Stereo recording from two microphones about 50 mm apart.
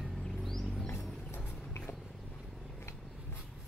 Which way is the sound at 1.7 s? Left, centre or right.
Left.